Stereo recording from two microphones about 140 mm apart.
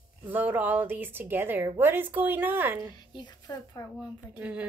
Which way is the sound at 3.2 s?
30° left (ahead or behind).